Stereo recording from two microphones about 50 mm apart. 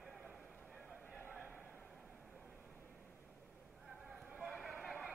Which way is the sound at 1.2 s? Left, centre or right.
Right.